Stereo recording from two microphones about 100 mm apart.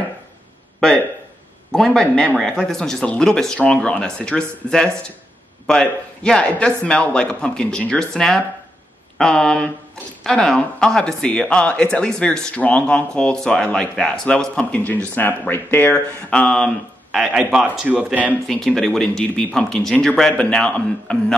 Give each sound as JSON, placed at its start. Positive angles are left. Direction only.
{"t": 1.7, "sound": "speech", "side_deg": 5}
{"t": 16.3, "sound": "speech", "side_deg": 5}
{"t": 17.3, "sound": "a man's voice", "side_deg": -10}
{"t": 18.8, "sound": "speech", "side_deg": 5}